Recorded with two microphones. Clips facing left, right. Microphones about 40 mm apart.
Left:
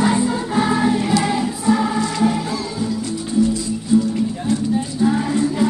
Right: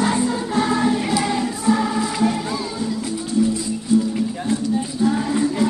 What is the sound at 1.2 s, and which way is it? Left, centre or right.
Choir, centre.